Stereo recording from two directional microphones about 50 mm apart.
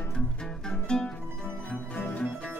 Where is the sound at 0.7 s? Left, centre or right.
Centre.